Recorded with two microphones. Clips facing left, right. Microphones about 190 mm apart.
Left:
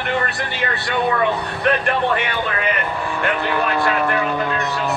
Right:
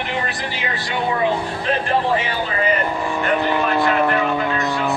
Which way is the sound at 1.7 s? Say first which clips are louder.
Left 1 dB; 65° left (ahead or behind).